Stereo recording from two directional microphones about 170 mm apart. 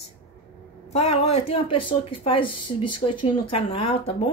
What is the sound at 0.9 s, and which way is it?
Speech, 35° left (ahead or behind).